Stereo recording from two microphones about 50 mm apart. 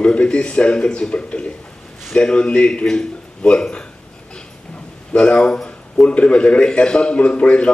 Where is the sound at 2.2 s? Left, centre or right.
Centre.